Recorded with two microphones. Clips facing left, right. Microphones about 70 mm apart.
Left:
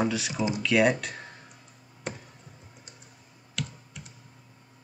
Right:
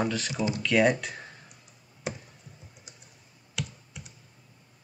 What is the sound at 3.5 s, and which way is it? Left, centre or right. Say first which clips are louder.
Computer keyboard: even; centre.